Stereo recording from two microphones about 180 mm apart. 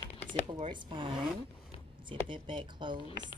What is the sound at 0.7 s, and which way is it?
A woman's voice, 25° right (ahead or behind).